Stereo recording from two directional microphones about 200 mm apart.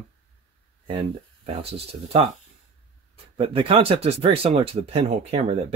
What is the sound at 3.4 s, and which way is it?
Speech, 30° right (ahead or behind).